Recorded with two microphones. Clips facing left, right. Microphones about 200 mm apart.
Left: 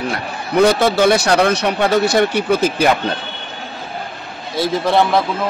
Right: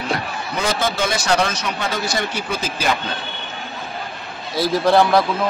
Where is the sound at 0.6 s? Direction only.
65° left (ahead or behind).